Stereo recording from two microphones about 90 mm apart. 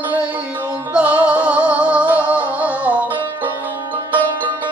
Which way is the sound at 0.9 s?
15° right (ahead or behind).